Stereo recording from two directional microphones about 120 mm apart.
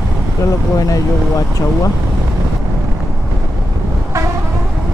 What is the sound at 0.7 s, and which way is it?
Speech, 30° left (ahead or behind).